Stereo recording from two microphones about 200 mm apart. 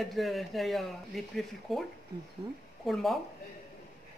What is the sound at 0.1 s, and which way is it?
A woman's voice, centre (ahead or behind).